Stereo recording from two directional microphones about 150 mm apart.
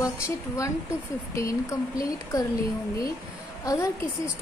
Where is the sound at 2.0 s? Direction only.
20° left (ahead or behind).